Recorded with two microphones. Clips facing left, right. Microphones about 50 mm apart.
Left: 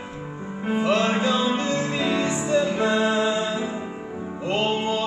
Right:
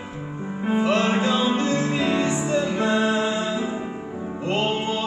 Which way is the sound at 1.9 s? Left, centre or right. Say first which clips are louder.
Right 1 dB; centre.